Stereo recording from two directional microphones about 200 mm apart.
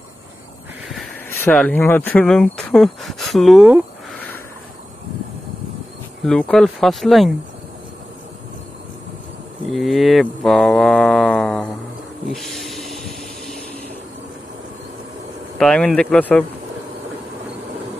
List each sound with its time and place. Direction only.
1.3 s speech: 10° left (ahead or behind)
6.2 s speech: 5° left (ahead or behind)
9.7 s speech: centre (ahead or behind)
12.3 s a sound: centre (ahead or behind)
15.5 s speech: 5° left (ahead or behind)